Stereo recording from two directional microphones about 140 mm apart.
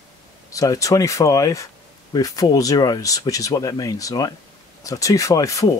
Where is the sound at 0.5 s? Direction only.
25° left (ahead or behind).